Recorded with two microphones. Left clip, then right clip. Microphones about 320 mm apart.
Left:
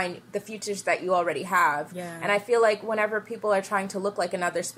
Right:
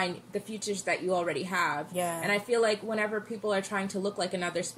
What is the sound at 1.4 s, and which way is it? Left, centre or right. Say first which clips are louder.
A woman's voice: left 7 dB; centre.